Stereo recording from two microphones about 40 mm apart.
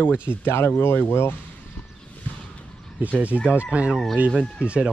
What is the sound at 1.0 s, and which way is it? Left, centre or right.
Speech, left.